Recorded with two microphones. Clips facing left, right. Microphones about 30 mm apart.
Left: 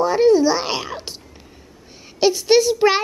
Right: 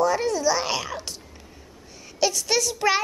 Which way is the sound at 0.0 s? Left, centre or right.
Left.